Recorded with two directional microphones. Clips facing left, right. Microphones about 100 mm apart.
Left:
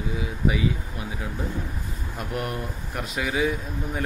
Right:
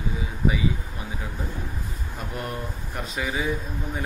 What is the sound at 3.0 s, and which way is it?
Speech, centre (ahead or behind).